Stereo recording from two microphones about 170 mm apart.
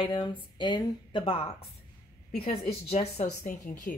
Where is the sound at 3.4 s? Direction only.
50° left (ahead or behind).